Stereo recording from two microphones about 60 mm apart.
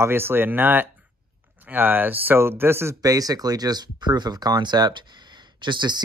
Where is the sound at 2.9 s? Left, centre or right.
Right.